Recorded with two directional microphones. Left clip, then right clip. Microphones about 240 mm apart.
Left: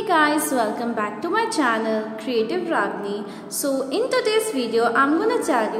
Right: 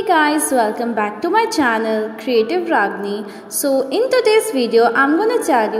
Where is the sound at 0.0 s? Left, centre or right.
Centre.